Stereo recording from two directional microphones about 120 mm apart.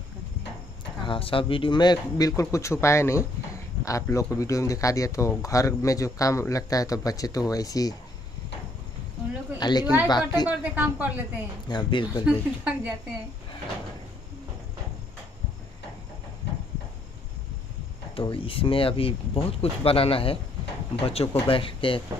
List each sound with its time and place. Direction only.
1.0 s speech: 45° left (ahead or behind); by 7.9 s 30° left (ahead or behind)
9.6 s speech: 35° left (ahead or behind)
10.6 s a woman's voice: 15° right (ahead or behind)
11.7 s speech: 40° left (ahead or behind)
12.3 s a woman's voice: 10° right (ahead or behind)
18.1 s speech: 45° left (ahead or behind)